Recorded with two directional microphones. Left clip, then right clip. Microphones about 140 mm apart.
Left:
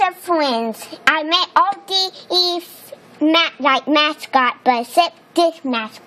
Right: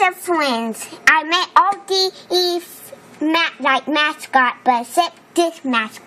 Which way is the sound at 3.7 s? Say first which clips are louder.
Left 2 dB; 55° left (ahead or behind).